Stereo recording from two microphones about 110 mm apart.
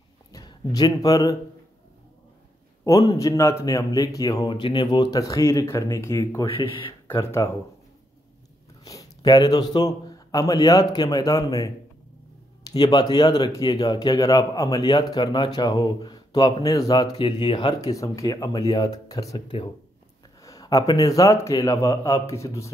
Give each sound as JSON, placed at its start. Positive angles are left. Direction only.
{"t": 0.3, "sound": "speech", "side_deg": 35}
{"t": 2.8, "sound": "speech", "side_deg": 30}
{"t": 4.6, "sound": "speech", "side_deg": 50}
{"t": 5.2, "sound": "a man's voice", "side_deg": 30}
{"t": 6.4, "sound": "speech", "side_deg": 55}
{"t": 7.2, "sound": "a man's voice", "side_deg": 25}
{"t": 8.8, "sound": "a man's voice", "side_deg": 35}
{"t": 12.9, "sound": "speech", "side_deg": 40}
{"t": 17.2, "sound": "speech", "side_deg": 50}
{"t": 17.7, "sound": "speech", "side_deg": 30}
{"t": 20.4, "sound": "a man's voice", "side_deg": 30}